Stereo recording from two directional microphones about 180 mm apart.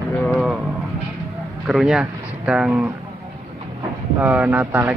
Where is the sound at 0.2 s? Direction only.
5° left (ahead or behind).